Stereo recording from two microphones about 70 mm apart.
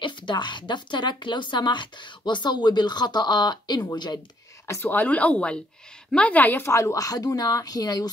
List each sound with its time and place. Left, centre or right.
0.3 s speech: left
4.6 s speech: left
5.0 s speech: left
6.6 s a woman's voice: left